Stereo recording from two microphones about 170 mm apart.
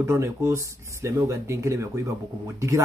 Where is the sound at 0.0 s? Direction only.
15° right (ahead or behind).